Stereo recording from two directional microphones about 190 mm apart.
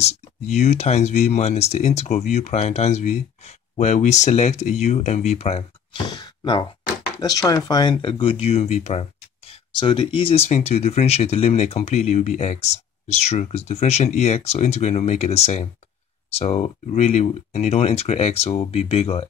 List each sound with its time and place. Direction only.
0.0 s speech: 35° left (ahead or behind)
9.5 s speech: 25° left (ahead or behind)